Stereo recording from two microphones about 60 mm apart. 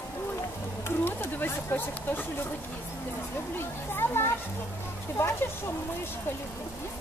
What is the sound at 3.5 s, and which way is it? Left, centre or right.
Speech, left.